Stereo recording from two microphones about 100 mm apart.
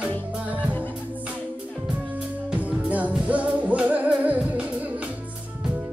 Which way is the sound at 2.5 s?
15° right (ahead or behind).